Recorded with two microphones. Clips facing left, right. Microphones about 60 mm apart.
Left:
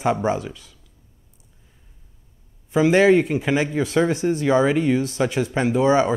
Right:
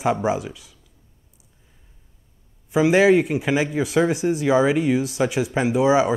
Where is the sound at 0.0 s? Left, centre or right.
Centre.